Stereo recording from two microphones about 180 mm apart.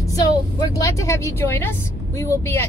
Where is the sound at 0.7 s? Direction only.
20° left (ahead or behind).